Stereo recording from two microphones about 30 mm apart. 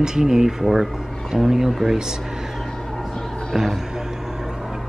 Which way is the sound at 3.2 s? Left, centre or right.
Centre.